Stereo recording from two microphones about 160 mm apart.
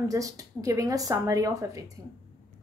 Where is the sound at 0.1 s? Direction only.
20° right (ahead or behind).